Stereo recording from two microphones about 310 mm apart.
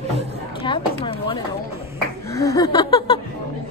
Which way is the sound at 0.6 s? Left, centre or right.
Centre.